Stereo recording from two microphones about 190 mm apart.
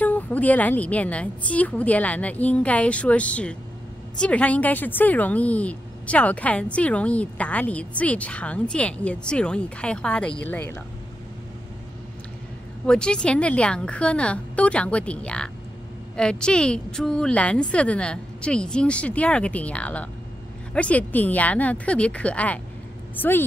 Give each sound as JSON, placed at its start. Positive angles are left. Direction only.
{"t": 0.0, "sound": "speech", "side_deg": 10}
{"t": 12.8, "sound": "a woman's voice", "side_deg": 5}